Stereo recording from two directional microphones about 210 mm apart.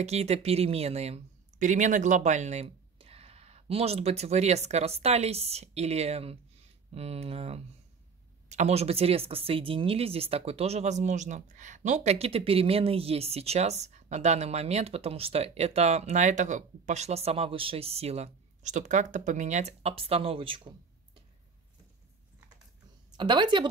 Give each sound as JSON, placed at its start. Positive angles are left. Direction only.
{"t": 0.0, "sound": "speech", "side_deg": -30}
{"t": 23.1, "sound": "speech", "side_deg": -20}